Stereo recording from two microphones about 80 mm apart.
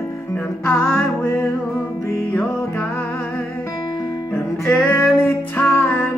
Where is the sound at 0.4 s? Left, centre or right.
Left.